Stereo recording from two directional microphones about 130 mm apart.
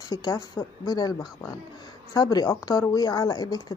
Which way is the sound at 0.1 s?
30° left (ahead or behind).